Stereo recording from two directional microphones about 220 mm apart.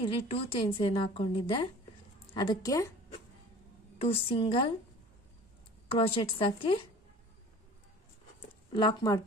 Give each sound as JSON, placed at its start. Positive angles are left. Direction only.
{"t": 0.3, "sound": "a woman's voice", "side_deg": 25}
{"t": 4.1, "sound": "a woman's voice", "side_deg": 25}
{"t": 5.9, "sound": "a woman's voice", "side_deg": 25}
{"t": 8.7, "sound": "a woman's voice", "side_deg": 20}